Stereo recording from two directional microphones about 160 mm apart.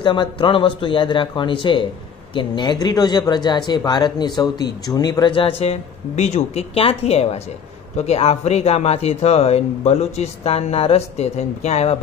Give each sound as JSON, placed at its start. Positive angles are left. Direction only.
{"t": 0.0, "sound": "speech", "side_deg": 30}
{"t": 5.6, "sound": "speech", "side_deg": 45}